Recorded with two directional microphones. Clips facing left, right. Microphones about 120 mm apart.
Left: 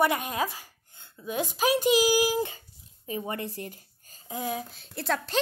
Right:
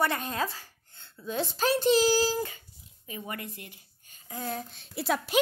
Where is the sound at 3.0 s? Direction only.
30° left (ahead or behind).